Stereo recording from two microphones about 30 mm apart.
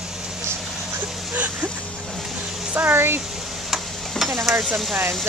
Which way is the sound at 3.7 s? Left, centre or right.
Centre.